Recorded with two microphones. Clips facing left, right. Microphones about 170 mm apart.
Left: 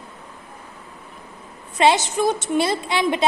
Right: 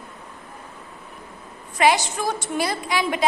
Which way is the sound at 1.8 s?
20° left (ahead or behind).